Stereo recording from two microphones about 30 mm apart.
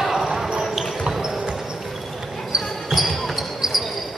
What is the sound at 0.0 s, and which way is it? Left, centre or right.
Basketball bounce, centre.